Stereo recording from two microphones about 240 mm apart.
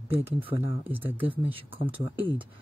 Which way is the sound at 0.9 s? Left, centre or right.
Centre.